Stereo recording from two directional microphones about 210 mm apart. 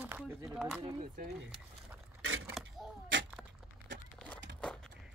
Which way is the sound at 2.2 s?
85° right.